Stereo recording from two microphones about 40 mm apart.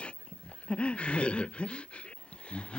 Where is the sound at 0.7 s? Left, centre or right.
Left.